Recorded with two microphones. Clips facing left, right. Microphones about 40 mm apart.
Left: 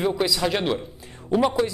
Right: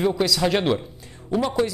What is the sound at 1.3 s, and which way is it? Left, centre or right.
Speech, centre.